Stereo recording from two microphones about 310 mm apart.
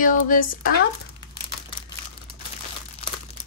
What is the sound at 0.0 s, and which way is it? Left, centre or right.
Speech, left.